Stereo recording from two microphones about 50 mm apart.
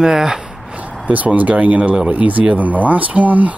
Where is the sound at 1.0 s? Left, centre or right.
Right.